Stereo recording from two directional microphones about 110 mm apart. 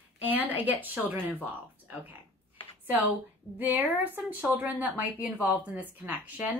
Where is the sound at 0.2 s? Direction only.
15° right (ahead or behind).